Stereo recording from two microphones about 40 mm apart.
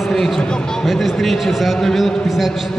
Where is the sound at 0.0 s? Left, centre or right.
Centre.